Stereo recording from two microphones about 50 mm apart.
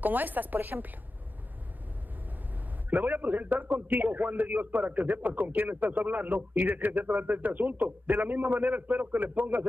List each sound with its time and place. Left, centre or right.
0.0 s a man's voice: right
2.9 s a man's voice: right